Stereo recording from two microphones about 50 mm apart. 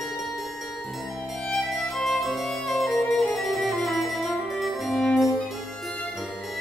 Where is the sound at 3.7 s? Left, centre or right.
Left.